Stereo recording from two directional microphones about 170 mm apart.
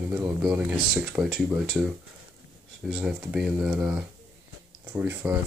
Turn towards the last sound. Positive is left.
turn(degrees=-15)  # may be behind; listen again after turning